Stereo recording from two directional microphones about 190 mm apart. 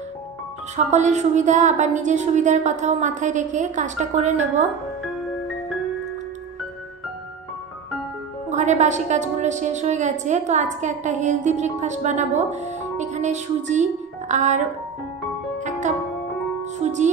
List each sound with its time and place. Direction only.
0.8 s a woman's voice: 40° right (ahead or behind)
8.5 s a woman's voice: 40° right (ahead or behind)
16.8 s music: 40° right (ahead or behind)